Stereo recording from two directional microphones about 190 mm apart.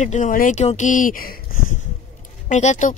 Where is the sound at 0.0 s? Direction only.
40° left (ahead or behind).